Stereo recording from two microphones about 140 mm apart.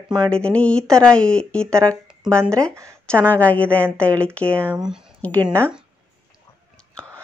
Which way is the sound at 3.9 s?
10° left (ahead or behind).